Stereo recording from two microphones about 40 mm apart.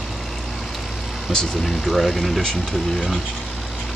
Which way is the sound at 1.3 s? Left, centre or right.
Centre.